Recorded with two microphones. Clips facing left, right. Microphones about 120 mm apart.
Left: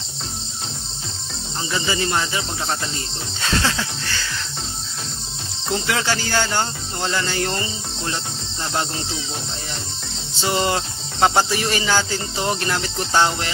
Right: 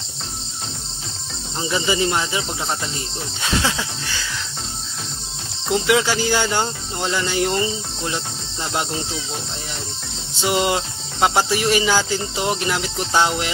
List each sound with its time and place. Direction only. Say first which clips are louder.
1.7 s speech: right 3 dB; 15° right (ahead or behind)
3.4 s speech: even; 10° right (ahead or behind)
5.7 s speech: right 4 dB; 5° right (ahead or behind)
10.4 s speech: right 1 dB; 10° right (ahead or behind)